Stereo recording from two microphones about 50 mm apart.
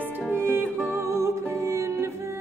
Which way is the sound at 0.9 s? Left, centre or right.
Right.